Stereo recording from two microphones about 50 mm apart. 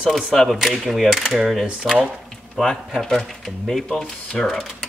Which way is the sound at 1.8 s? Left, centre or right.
Centre.